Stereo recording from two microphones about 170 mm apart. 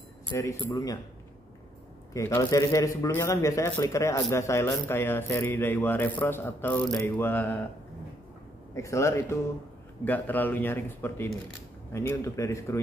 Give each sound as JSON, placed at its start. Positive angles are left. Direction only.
{"t": 0.3, "sound": "a man's voice", "side_deg": 15}
{"t": 2.1, "sound": "a man's voice", "side_deg": 15}
{"t": 8.7, "sound": "a man's voice", "side_deg": 15}